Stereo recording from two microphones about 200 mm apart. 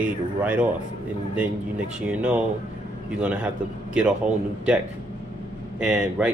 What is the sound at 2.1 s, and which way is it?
Speech, 5° right (ahead or behind).